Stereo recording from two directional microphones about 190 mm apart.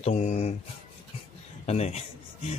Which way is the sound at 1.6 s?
35° left (ahead or behind).